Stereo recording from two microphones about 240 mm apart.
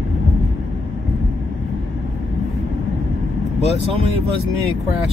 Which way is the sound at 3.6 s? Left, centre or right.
Left.